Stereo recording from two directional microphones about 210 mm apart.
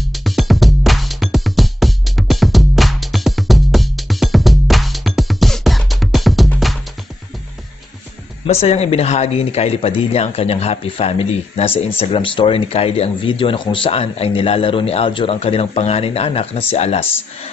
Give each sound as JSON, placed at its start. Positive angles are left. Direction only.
{"t": 0.0, "sound": "music", "side_deg": 0}
{"t": 8.5, "sound": "speech", "side_deg": 30}